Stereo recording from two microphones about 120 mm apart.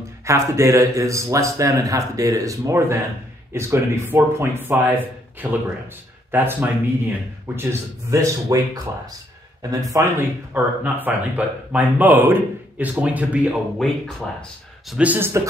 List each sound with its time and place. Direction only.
0.2 s a man's voice: 25° right (ahead or behind)
9.6 s a man's voice: 30° right (ahead or behind)
10.1 s speech: 15° right (ahead or behind)
13.7 s speech: 5° left (ahead or behind)
14.9 s speech: 10° right (ahead or behind)